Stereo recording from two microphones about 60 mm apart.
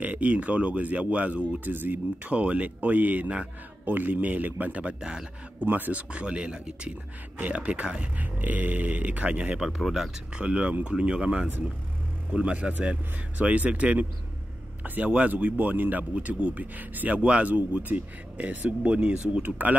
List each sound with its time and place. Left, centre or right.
0.0 s speech: right
5.6 s speech: right
9.8 s speech: centre
10.3 s speech: centre